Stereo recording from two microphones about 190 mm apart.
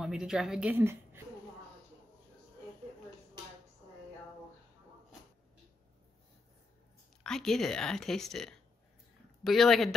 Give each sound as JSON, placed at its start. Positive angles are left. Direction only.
{"t": 0.0, "sound": "a woman's voice", "side_deg": -5}
{"t": 7.2, "sound": "speech", "side_deg": 0}